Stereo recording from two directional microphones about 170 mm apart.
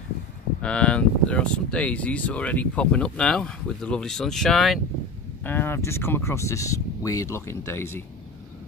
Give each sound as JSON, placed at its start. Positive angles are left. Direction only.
{"t": 0.6, "sound": "speech", "side_deg": 5}
{"t": 5.4, "sound": "speech", "side_deg": 10}